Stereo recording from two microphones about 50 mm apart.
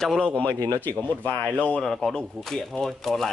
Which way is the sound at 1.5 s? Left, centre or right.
Left.